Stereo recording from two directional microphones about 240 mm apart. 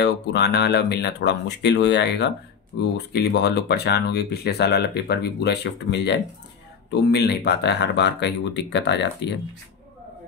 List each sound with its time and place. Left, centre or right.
0.0 s speech: left